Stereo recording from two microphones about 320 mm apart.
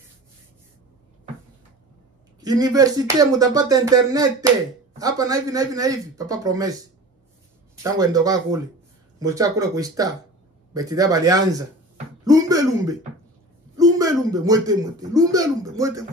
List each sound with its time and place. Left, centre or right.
2.4 s speech: centre